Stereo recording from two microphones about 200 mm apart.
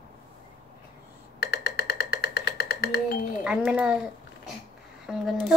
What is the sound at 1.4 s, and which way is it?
Music, 50° left (ahead or behind).